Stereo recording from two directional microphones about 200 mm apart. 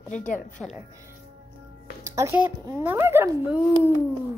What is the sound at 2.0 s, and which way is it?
A woman's voice, 15° right (ahead or behind).